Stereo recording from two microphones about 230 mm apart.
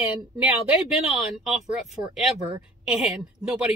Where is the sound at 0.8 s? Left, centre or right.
Centre.